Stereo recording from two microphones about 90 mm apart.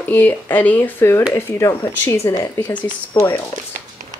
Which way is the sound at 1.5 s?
30° left (ahead or behind).